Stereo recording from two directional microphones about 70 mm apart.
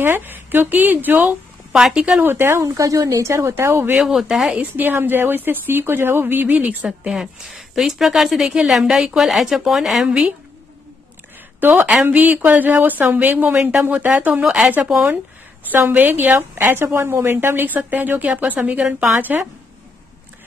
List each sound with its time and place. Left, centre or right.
0.0 s a woman's voice: right
1.7 s a woman's voice: centre
2.2 s a woman's voice: right
2.6 s speech: right
4.0 s a woman's voice: centre
4.6 s a woman's voice: right
7.1 s a woman's voice: centre
11.6 s a woman's voice: right
15.7 s a woman's voice: right; by 19.1 s centre
19.1 s a woman's voice: right